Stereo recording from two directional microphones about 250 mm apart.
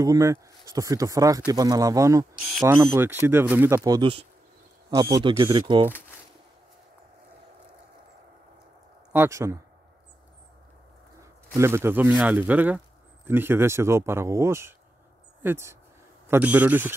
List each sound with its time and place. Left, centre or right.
0.0 s speech: centre
9.1 s speech: centre
11.5 s speech: centre